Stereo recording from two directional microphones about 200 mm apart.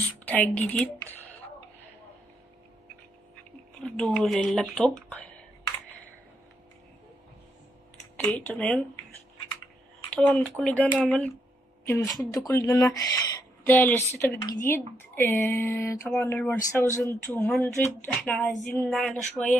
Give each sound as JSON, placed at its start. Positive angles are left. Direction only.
{"t": 0.7, "sound": "speech", "side_deg": 10}
{"t": 3.8, "sound": "speech", "side_deg": 5}
{"t": 8.2, "sound": "speech", "side_deg": 5}
{"t": 10.1, "sound": "a woman's voice", "side_deg": 5}